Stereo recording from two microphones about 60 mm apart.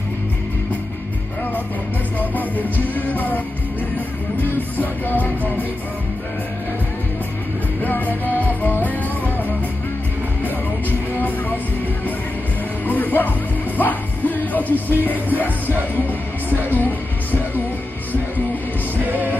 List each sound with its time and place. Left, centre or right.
2.1 s music: left
7.8 s music: left
11.1 s music: left
12.8 s music: left
19.0 s music: right